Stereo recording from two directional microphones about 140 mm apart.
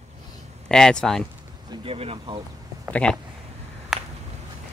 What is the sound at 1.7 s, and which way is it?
Speech, 40° right (ahead or behind).